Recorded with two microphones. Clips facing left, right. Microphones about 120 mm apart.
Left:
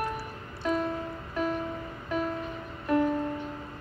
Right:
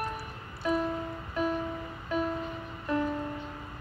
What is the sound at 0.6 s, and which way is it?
Music, 15° right (ahead or behind).